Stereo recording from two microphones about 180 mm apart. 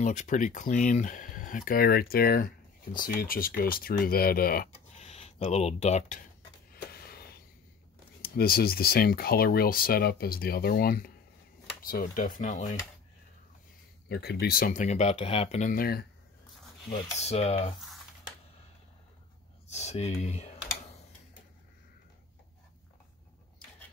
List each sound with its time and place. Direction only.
0.0 s speech: 40° left (ahead or behind)
4.9 s speech: 35° left (ahead or behind)
6.7 s a sound: 60° left (ahead or behind)
8.2 s speech: 55° left (ahead or behind)
14.0 s speech: 65° left (ahead or behind); by 15.7 s 35° left (ahead or behind)
15.7 s speech: 60° left (ahead or behind)
17.2 s speech: 35° left (ahead or behind)
19.7 s speech: 35° left (ahead or behind)